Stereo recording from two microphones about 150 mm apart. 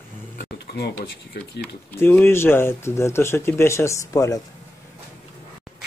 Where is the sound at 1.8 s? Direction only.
15° left (ahead or behind).